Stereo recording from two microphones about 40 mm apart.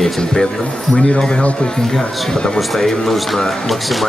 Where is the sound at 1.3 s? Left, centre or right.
Left.